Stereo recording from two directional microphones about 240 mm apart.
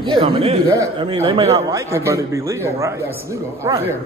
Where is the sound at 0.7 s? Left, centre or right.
Centre.